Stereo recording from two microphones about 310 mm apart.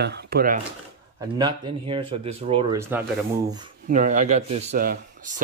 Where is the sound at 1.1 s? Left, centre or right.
Centre.